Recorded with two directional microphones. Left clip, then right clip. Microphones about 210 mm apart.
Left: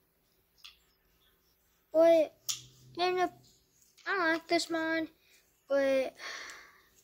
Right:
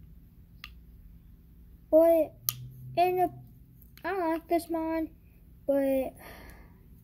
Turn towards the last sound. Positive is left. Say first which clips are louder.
# left 7 dB
turn(degrees=5)  # may be behind; listen again after turning